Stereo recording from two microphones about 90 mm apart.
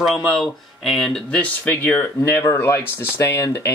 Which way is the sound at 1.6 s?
20° left (ahead or behind).